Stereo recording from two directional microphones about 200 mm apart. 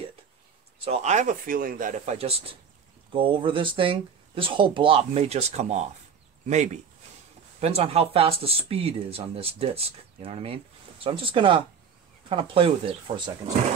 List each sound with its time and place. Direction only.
0.8 s speech: 35° right (ahead or behind)